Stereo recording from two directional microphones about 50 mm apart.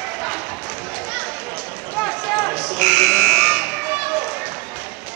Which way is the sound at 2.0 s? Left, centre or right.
Left.